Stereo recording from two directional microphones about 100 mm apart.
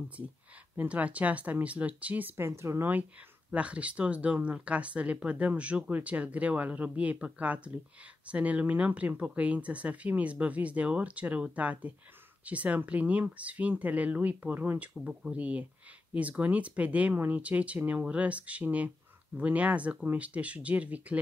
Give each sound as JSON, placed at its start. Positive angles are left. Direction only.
{"t": 0.7, "sound": "speech", "side_deg": -15}
{"t": 3.5, "sound": "speech", "side_deg": -10}